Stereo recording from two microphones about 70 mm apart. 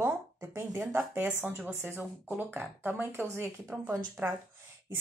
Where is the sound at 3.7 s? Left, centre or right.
Centre.